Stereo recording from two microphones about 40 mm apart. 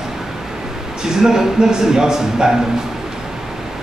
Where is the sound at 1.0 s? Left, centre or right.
Centre.